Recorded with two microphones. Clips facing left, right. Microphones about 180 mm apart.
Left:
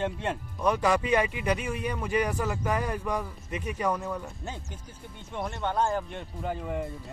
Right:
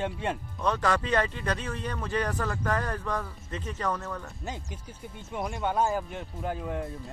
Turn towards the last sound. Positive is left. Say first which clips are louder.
# even
turn(degrees=0)  # may be behind; listen again after turning